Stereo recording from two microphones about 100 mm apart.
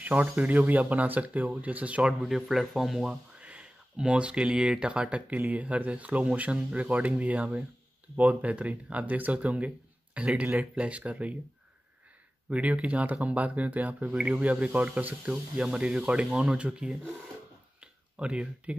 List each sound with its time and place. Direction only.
0.0 s speech: 15° right (ahead or behind)
2.2 s speech: centre (ahead or behind)
12.4 s speech: 15° right (ahead or behind)
17.7 s a sound: 10° right (ahead or behind)